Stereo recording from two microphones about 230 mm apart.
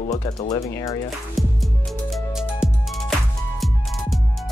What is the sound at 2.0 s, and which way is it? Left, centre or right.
Music, centre.